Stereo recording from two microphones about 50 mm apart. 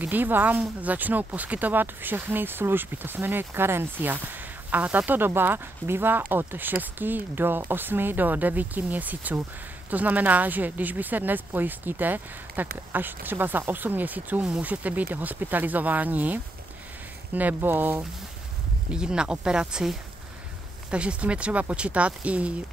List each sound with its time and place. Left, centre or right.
0.0 s speech: right
18.9 s speech: centre